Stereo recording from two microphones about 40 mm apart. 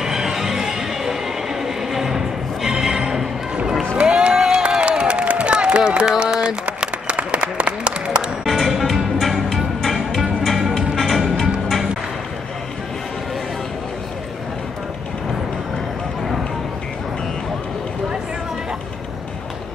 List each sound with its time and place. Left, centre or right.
0.0 s music: centre
4.1 s a sound: centre
8.5 s music: centre